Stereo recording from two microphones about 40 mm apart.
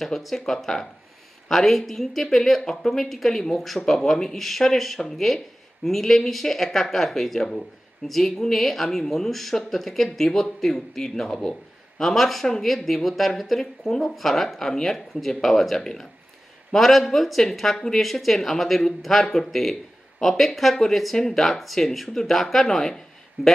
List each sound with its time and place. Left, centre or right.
0.0 s speech: centre
2.6 s speech: centre
3.1 s speech: centre
7.3 s speech: centre
8.1 s speech: centre